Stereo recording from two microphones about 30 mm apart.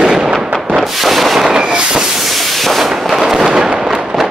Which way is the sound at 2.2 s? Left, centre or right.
Centre.